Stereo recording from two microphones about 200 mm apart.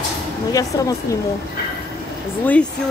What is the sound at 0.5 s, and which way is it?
Speech, 15° left (ahead or behind).